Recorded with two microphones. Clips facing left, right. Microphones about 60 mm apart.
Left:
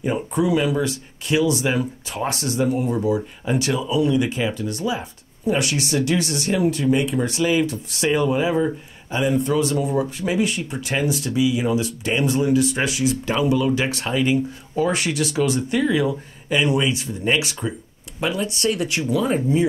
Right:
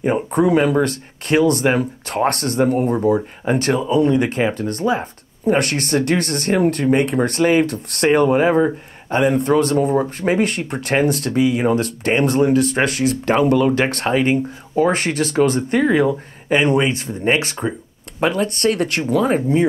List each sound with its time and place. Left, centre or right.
0.0 s speech: right